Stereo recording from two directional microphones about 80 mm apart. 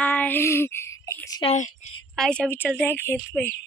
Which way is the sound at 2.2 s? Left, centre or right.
Centre.